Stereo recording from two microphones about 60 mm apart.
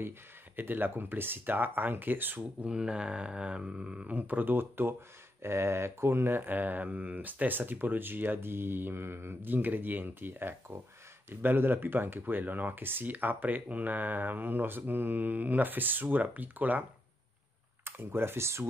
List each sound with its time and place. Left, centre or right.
0.6 s speech: right
2.4 s speech: centre
4.2 s speech: right
17.8 s speech: right